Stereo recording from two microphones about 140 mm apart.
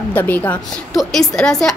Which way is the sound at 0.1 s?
10° left (ahead or behind).